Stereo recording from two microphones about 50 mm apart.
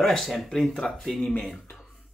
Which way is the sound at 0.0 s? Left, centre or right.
Centre.